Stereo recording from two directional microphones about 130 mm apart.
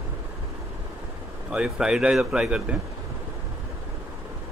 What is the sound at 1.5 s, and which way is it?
A man's voice, 5° right (ahead or behind).